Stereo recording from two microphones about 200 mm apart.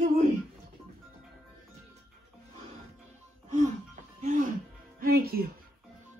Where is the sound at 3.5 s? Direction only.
35° right (ahead or behind).